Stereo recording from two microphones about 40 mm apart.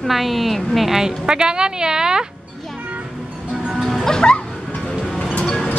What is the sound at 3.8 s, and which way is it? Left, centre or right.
Music, centre.